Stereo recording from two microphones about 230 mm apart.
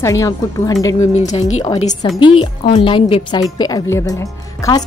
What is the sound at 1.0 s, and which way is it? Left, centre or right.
A woman's voice, left.